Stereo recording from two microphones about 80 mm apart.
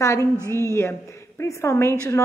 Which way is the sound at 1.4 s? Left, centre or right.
Left.